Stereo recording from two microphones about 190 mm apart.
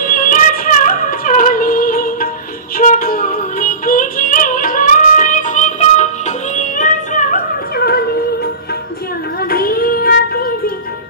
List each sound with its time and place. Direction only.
0.0 s music: 45° left (ahead or behind)
9.5 s child singing: 50° left (ahead or behind)